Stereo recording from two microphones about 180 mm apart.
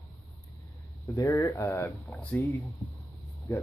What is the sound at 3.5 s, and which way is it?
Speech, 20° left (ahead or behind).